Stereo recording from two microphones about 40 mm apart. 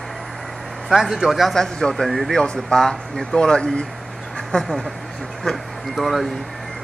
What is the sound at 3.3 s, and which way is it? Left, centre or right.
Speech, centre.